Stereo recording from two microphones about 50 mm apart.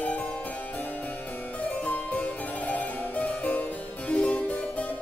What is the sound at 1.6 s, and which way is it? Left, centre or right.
Harpsichord, left.